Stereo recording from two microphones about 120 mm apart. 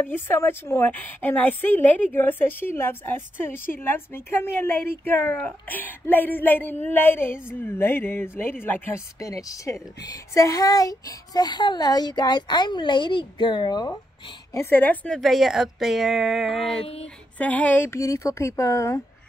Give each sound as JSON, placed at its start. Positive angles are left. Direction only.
{"t": 0.0, "sound": "a woman's voice", "side_deg": 20}
{"t": 14.5, "sound": "a woman's voice", "side_deg": 20}
{"t": 15.1, "sound": "speech", "side_deg": 0}
{"t": 16.8, "sound": "a sound", "side_deg": 60}
{"t": 17.4, "sound": "speech", "side_deg": 10}